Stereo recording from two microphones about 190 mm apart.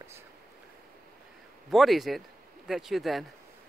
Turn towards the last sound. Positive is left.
turn(degrees=0)  # may be behind; listen again after turning